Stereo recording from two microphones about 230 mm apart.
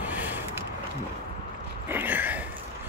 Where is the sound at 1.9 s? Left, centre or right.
Centre.